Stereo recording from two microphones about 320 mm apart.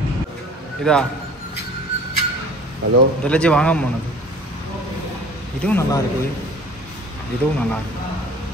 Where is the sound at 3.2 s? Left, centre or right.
Centre.